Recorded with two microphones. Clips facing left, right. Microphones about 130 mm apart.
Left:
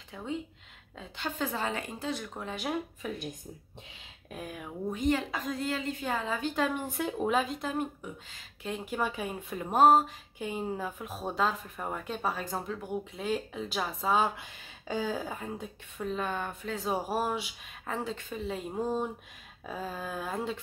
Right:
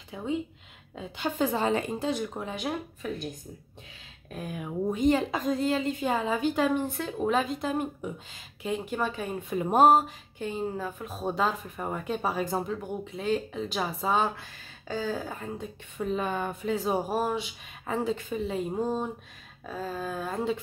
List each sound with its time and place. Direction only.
0.1 s a woman's voice: 10° right (ahead or behind); by 2.0 s 25° right (ahead or behind)
2.0 s speech: 15° right (ahead or behind)
2.5 s speech: 5° left (ahead or behind)
4.3 s speech: centre (ahead or behind)
4.8 s a woman's voice: 25° right (ahead or behind)
6.7 s speech: 10° left (ahead or behind)
9.6 s speech: 15° right (ahead or behind)
10.4 s a sound: 10° left (ahead or behind)
11.3 s speech: centre (ahead or behind)
12.8 s speech: 5° left (ahead or behind)
17.8 s speech: 5° right (ahead or behind)
19.6 s a sound: 10° left (ahead or behind)